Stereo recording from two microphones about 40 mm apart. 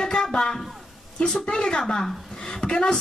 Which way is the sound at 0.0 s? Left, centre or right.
Left.